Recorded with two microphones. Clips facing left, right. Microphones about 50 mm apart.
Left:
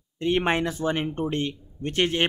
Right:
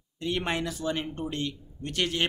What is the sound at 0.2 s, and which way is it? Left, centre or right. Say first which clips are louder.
A man's voice: left 6 dB; left.